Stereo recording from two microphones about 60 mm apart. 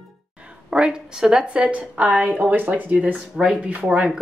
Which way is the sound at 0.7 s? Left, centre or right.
Centre.